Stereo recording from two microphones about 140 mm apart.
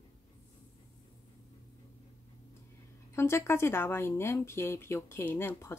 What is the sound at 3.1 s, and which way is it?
Speech, 20° left (ahead or behind).